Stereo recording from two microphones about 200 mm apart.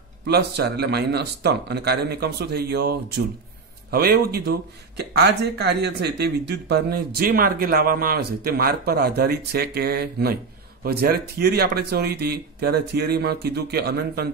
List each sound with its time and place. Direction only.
0.3 s speech: 55° right (ahead or behind)